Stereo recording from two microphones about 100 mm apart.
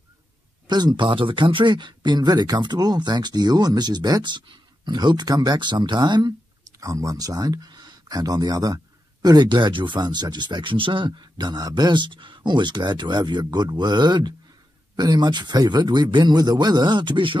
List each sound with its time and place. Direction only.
0.7 s speech: 45° right (ahead or behind)